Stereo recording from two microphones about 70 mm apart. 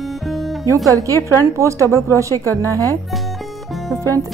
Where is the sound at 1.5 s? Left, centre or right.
Right.